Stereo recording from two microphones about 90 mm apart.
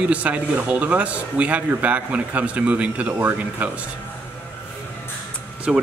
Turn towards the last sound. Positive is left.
turn(degrees=-5)  # may be behind; listen again after turning